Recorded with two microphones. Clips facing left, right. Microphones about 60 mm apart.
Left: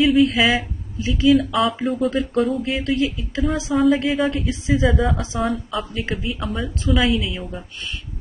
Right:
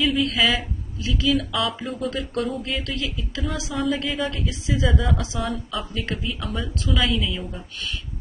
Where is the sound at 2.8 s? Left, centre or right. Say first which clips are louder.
Left 8 dB; left.